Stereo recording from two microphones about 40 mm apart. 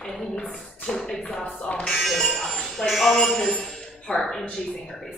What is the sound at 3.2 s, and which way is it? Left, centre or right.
Speech, centre.